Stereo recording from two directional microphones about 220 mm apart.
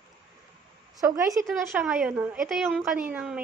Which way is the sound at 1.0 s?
15° right (ahead or behind).